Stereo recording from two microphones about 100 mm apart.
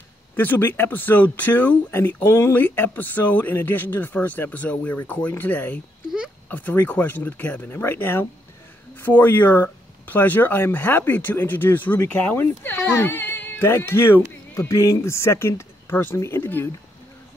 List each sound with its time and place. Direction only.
0.4 s speech: 20° left (ahead or behind)
6.0 s a sound: 5° right (ahead or behind)
6.5 s speech: 15° left (ahead or behind)